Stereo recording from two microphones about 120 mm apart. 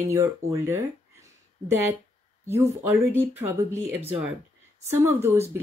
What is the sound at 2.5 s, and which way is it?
Speech, 20° right (ahead or behind).